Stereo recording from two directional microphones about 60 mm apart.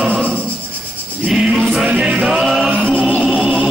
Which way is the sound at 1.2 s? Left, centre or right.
Centre.